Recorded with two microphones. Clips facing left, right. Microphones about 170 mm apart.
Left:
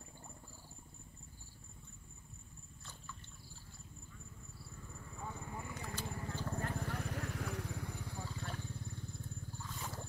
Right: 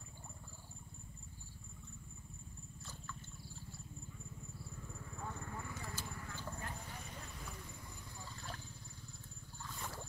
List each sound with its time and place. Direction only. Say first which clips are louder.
5.1 s a sound: left 1 dB; 5° left (ahead or behind)
6.0 s horse: left 5 dB; 30° left (ahead or behind)
6.5 s vehicle: left 7 dB; 55° left (ahead or behind)